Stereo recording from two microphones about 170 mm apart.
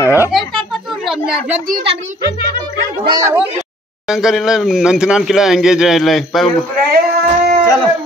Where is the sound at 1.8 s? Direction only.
40° right (ahead or behind).